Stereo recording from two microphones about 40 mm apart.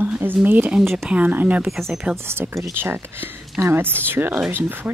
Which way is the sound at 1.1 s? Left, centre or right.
Right.